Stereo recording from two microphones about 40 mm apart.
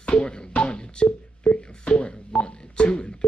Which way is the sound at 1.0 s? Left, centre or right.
Left.